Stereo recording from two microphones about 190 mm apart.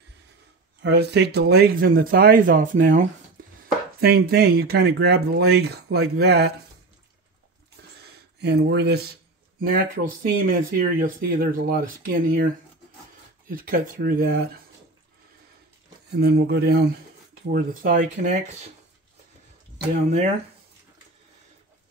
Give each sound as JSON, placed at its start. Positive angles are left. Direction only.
{"t": 0.8, "sound": "speech", "side_deg": -60}
{"t": 4.0, "sound": "speech", "side_deg": -55}
{"t": 8.0, "sound": "a sound", "side_deg": -65}
{"t": 9.6, "sound": "speech", "side_deg": -50}
{"t": 16.1, "sound": "speech", "side_deg": -55}